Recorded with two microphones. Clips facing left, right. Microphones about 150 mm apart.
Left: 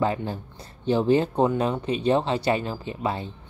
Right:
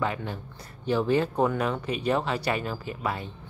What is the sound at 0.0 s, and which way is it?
Speech, 30° left (ahead or behind).